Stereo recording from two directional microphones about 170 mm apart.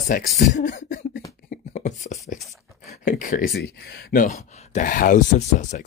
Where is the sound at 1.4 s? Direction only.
50° left (ahead or behind).